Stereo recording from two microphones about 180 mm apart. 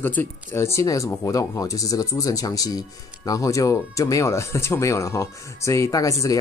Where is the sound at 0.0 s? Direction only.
10° left (ahead or behind).